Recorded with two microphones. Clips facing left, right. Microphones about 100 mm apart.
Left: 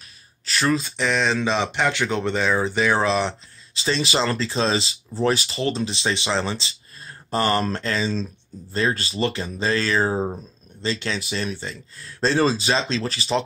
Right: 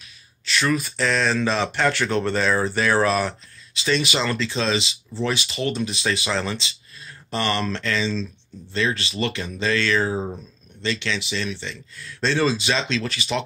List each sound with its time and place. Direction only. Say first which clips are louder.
0.5 s speech: left 1 dB; 30° left (ahead or behind)